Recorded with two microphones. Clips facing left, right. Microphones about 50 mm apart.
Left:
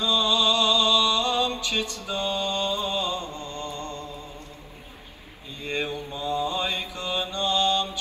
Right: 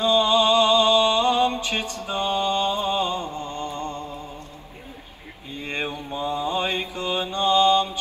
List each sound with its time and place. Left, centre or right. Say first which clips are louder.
0.0 s music: right 5 dB; right
2.0 s mantra: right 4 dB; right
3.7 s music: right 4 dB; right
5.6 s mantra: even; right